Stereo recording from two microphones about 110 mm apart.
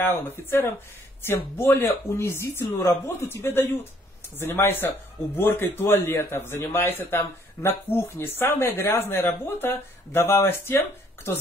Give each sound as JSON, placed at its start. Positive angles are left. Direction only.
{"t": 0.0, "sound": "a man's voice", "side_deg": 20}